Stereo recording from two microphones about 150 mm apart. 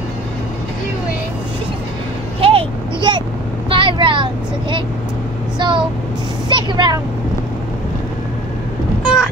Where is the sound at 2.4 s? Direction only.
35° right (ahead or behind).